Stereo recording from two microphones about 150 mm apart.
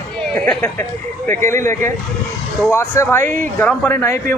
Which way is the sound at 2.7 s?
15° left (ahead or behind).